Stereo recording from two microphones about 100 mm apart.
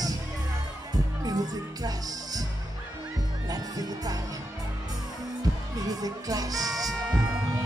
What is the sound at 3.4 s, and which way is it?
Music, 40° right (ahead or behind).